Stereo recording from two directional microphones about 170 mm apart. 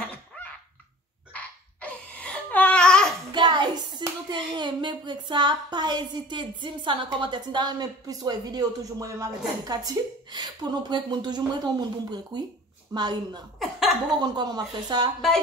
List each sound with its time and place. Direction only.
1.3 s babbling: 10° left (ahead or behind)
3.3 s a woman's voice: 25° right (ahead or behind)
13.6 s chuckle: centre (ahead or behind)
14.2 s a woman's voice: 25° right (ahead or behind)